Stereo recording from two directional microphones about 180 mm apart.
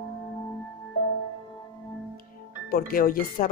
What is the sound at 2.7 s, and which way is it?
Speech, 55° left (ahead or behind).